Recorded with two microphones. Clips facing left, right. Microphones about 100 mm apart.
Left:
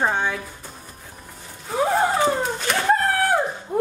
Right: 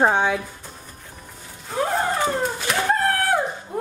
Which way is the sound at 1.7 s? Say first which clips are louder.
Left 3 dB; 5° left (ahead or behind).